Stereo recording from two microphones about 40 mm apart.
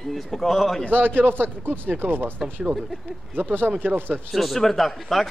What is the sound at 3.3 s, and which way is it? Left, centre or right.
Speech, right.